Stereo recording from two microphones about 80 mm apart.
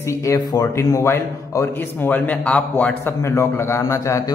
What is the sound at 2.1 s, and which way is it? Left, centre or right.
Speech, left.